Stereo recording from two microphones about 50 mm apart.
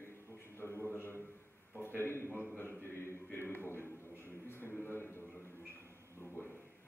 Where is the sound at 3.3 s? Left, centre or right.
Left.